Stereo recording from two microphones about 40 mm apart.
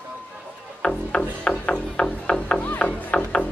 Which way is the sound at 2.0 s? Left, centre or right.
Centre.